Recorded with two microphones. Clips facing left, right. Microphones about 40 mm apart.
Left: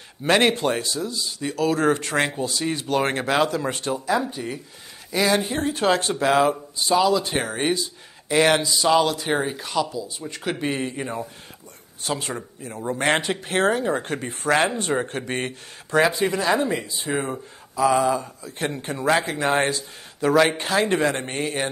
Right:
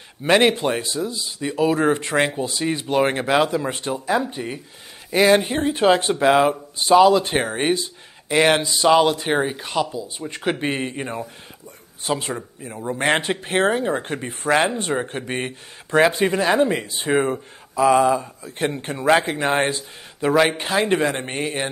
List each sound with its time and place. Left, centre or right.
0.2 s speech: centre
6.8 s speech: right; by 8.6 s centre
8.6 s speech: right; by 15.5 s centre
16.1 s speech: right; by 18.3 s centre
18.6 s speech: right